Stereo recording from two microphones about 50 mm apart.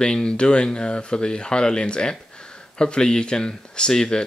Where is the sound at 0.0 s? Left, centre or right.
Centre.